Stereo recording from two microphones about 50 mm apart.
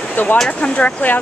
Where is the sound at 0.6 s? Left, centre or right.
Left.